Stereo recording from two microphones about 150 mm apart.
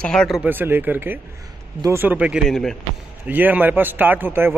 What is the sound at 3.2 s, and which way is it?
Speech, 10° right (ahead or behind).